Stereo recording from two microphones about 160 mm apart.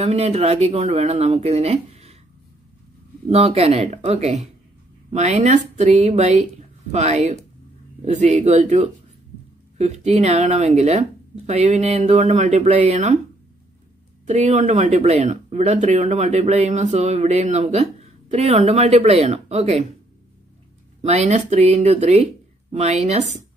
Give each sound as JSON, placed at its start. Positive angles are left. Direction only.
{"t": 0.0, "sound": "speech", "side_deg": -40}
{"t": 3.3, "sound": "speech", "side_deg": -40}
{"t": 14.2, "sound": "speech", "side_deg": -45}
{"t": 21.0, "sound": "speech", "side_deg": -45}